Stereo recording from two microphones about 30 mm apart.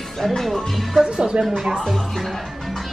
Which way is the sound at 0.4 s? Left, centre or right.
Centre.